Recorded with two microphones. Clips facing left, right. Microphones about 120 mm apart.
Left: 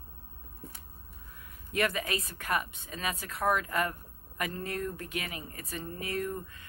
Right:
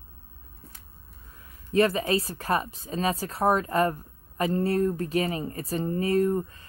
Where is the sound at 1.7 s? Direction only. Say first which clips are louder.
Right 8 dB; 30° right (ahead or behind).